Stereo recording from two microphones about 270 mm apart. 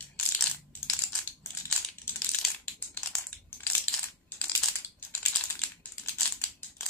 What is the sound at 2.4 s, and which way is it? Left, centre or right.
Crushing, centre.